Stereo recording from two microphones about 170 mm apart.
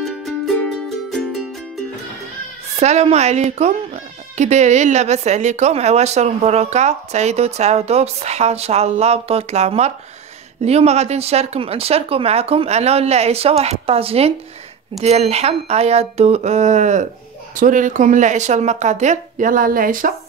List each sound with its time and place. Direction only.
0.0 s music: centre (ahead or behind)
2.7 s speech: 40° right (ahead or behind)